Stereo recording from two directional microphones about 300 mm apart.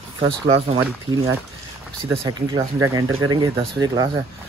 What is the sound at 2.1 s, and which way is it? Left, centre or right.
Speech, centre.